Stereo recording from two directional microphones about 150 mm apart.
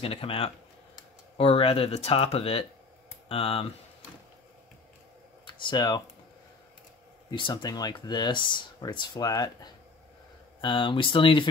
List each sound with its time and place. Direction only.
0.0 s speech: 40° left (ahead or behind)
5.5 s speech: 30° left (ahead or behind)
7.2 s speech: 30° left (ahead or behind)